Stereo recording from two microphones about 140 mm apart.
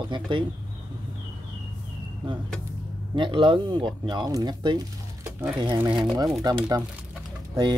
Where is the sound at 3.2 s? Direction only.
35° right (ahead or behind).